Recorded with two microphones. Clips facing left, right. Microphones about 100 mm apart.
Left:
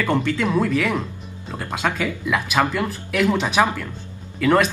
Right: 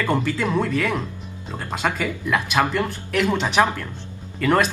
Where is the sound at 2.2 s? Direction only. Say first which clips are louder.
Even; 5° left (ahead or behind).